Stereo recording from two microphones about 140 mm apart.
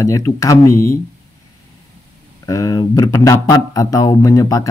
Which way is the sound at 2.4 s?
25° left (ahead or behind).